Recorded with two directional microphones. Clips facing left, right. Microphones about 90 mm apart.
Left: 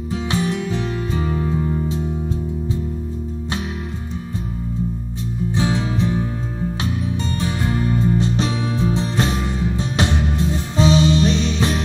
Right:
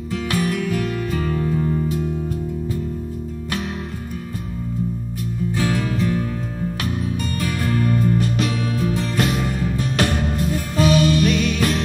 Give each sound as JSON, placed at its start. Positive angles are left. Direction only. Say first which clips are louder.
{"t": 0.1, "sound": "music", "louder": "even", "side_deg": 25}
{"t": 5.6, "sound": "music", "louder": "left 1 dB", "side_deg": 25}